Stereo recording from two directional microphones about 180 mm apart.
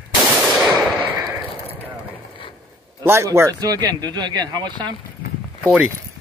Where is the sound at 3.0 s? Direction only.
15° right (ahead or behind).